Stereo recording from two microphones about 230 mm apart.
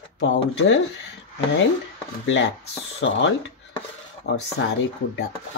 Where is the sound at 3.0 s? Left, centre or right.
Left.